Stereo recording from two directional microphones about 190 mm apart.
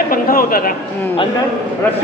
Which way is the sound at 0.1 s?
50° left (ahead or behind).